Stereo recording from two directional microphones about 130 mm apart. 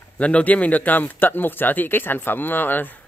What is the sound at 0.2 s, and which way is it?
Speech, 10° left (ahead or behind).